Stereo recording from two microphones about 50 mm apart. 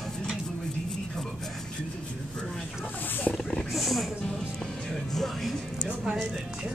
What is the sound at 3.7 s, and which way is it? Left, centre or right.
Music, centre.